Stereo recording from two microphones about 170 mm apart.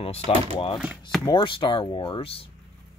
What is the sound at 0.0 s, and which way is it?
Speech, 35° left (ahead or behind).